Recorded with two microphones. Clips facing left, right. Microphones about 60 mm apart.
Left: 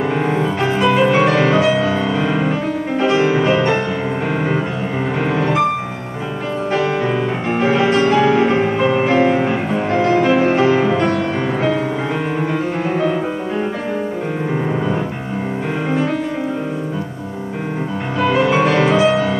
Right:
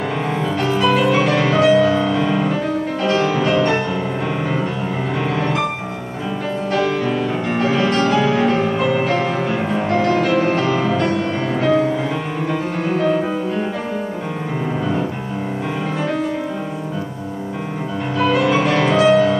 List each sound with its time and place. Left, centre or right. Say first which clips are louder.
0.3 s music: left 2 dB; left
5.2 s music: left 3 dB; left
6.7 s music: left 1 dB; left
18.2 s music: left 2 dB; left